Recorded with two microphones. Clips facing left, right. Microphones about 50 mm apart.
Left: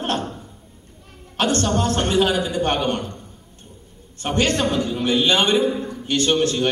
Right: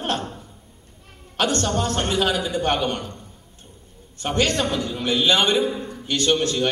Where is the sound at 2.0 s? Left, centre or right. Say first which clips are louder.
Left 4 dB; centre.